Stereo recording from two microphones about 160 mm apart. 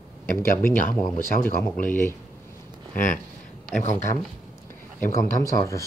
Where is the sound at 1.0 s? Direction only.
60° left (ahead or behind).